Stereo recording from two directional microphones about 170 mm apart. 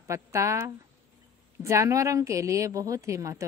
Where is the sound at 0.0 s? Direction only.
15° right (ahead or behind).